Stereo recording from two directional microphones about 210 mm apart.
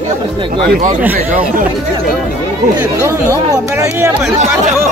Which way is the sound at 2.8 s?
10° right (ahead or behind).